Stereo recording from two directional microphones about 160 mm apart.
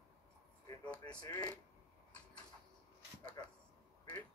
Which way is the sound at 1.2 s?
25° left (ahead or behind).